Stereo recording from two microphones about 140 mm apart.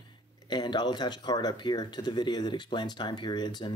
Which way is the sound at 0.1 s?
30° left (ahead or behind).